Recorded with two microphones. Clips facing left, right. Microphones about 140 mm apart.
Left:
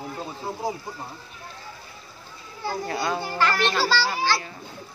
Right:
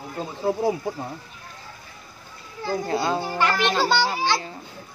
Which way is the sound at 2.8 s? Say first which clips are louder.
Right 3 dB; 30° right (ahead or behind).